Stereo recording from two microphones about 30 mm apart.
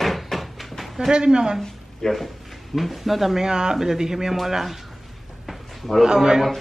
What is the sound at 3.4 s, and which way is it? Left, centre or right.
Speech, right.